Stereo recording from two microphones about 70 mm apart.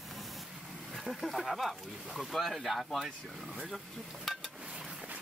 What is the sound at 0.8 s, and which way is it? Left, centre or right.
Speech, centre.